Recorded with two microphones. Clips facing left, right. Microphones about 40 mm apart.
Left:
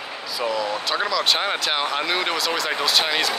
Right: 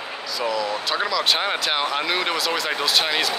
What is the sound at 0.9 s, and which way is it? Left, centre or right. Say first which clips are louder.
Speech: even; centre.